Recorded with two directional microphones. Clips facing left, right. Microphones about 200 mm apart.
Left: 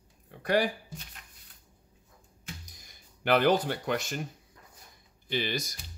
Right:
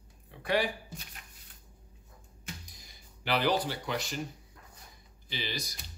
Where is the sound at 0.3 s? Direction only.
45° left (ahead or behind).